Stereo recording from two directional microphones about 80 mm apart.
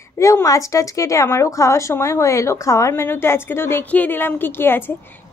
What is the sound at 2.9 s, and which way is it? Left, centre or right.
A woman's voice, left.